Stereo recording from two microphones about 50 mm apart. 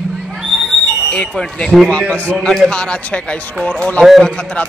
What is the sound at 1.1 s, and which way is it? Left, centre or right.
A man's voice, centre.